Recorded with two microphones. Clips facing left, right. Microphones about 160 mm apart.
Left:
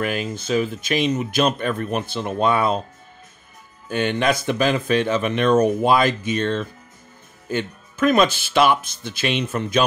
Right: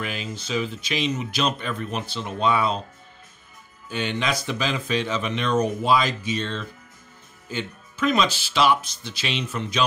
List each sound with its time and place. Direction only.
0.0 s speech: 50° left (ahead or behind)
3.9 s speech: 55° left (ahead or behind)